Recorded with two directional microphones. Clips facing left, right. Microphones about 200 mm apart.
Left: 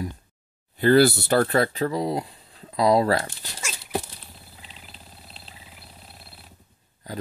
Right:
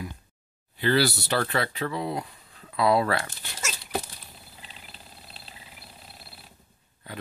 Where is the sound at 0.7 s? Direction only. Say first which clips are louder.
Left 7 dB; 50° left (ahead or behind).